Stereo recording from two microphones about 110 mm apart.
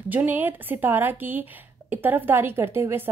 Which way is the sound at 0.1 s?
15° right (ahead or behind).